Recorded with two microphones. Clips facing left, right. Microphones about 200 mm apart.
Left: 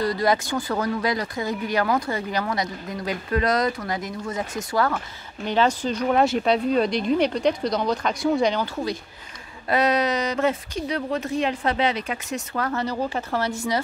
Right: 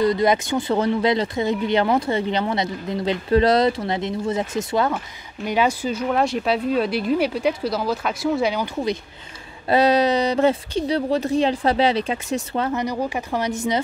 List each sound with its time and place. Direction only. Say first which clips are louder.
0.0 s speech: right 4 dB; 20° right (ahead or behind); by 8.6 s 5° right (ahead or behind)
9.7 s speech: right 4 dB; 30° right (ahead or behind)